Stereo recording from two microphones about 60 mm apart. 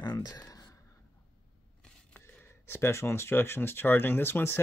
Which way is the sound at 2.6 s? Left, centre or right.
Left.